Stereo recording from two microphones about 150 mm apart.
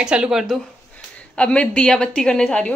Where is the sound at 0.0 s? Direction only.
5° right (ahead or behind).